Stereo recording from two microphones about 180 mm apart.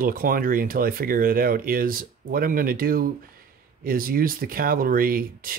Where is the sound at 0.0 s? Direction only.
50° right (ahead or behind).